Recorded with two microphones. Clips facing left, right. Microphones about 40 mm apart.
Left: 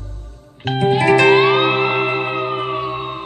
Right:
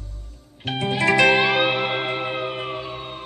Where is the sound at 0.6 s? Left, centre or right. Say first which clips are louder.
Left 6 dB; left.